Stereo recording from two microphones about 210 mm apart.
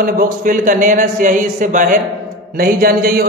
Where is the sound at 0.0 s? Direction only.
40° right (ahead or behind).